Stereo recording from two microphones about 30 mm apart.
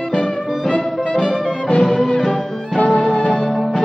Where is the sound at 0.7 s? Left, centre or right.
Left.